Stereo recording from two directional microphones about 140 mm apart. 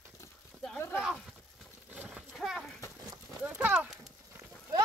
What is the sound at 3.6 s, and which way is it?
Clip-clop, 10° right (ahead or behind).